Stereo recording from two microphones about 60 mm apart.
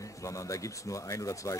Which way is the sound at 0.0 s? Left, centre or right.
Left.